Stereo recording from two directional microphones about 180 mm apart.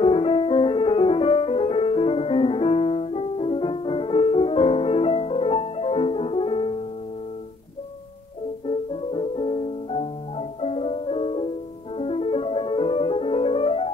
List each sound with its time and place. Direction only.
0.0 s music: 30° left (ahead or behind)
8.6 s music: 30° left (ahead or behind)